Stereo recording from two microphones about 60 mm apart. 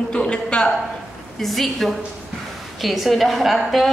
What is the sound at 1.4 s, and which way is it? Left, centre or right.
A woman's voice, centre.